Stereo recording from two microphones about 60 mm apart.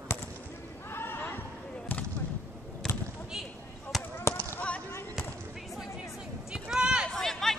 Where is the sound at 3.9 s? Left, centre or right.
Centre.